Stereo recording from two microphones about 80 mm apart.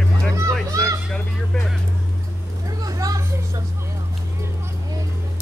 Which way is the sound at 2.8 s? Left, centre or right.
Right.